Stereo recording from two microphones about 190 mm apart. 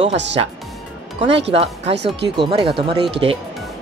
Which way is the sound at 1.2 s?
30° right (ahead or behind).